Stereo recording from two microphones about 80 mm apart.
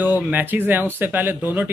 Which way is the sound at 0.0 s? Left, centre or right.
Right.